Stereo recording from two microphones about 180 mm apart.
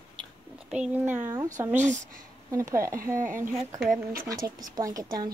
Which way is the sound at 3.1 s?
45° right (ahead or behind).